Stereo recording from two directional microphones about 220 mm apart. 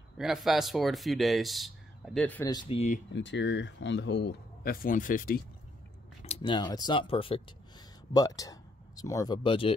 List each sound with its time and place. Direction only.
0.2 s speech: centre (ahead or behind)
2.5 s speech: 30° left (ahead or behind)
3.1 s speech: 55° left (ahead or behind)
6.2 s speech: 20° left (ahead or behind)